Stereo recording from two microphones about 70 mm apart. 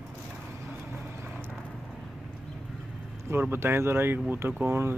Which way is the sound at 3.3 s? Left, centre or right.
Right.